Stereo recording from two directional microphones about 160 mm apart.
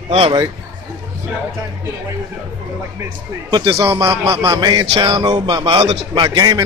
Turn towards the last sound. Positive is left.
turn(degrees=-25)  # may be behind; listen again after turning